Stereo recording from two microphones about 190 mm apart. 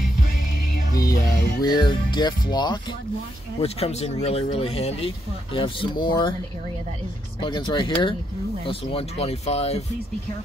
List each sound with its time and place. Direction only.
0.9 s music: 20° left (ahead or behind)
1.6 s speech: 20° left (ahead or behind)
3.6 s speech: 35° left (ahead or behind)
7.3 s speech: 25° left (ahead or behind)